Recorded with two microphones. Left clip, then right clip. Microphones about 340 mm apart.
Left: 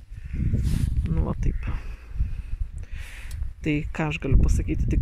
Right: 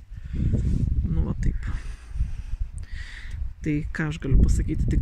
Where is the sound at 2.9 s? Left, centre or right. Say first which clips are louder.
Right 2 dB; centre.